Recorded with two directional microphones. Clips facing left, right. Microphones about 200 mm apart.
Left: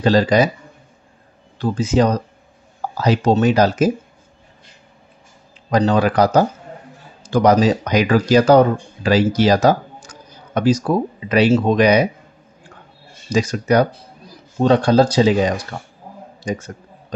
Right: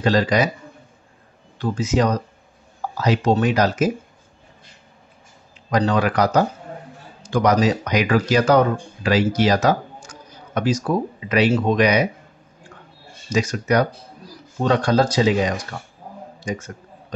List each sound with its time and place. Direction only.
0.0 s speech: 30° left (ahead or behind)
1.6 s speech: 30° left (ahead or behind)
5.7 s speech: 30° left (ahead or behind)
13.3 s speech: 30° left (ahead or behind)